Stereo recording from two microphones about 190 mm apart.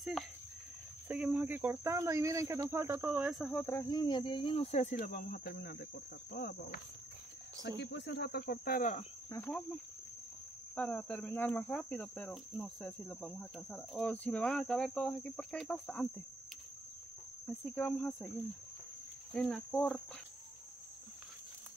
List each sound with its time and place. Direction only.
1.0 s speech: 5° right (ahead or behind)
3.6 s speech: 15° left (ahead or behind); by 4.9 s 35° left (ahead or behind)
4.9 s cricket: 50° left (ahead or behind)
7.8 s cricket: 65° left (ahead or behind); by 9.0 s 45° left (ahead or behind)
9.3 s cricket: 10° left (ahead or behind)
10.8 s cricket: 10° left (ahead or behind)
17.5 s cricket: 5° left (ahead or behind)
19.3 s cricket: 5° left (ahead or behind)